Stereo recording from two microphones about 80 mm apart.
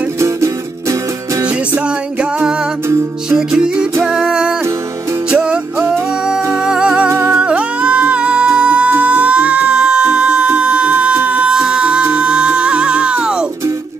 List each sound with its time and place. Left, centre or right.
0.2 s music: right
1.4 s music: centre
7.1 s music: right
7.3 s music: centre